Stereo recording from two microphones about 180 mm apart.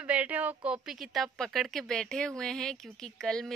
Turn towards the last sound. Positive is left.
turn(degrees=0)  # may be behind; listen again after turning